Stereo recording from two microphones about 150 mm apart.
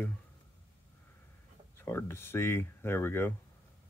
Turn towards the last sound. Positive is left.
turn(degrees=15)  # may be behind; listen again after turning